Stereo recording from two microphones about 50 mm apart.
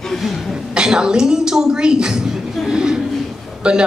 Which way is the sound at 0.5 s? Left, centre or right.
Centre.